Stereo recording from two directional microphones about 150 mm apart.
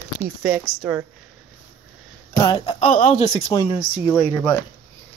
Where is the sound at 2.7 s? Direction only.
45° left (ahead or behind).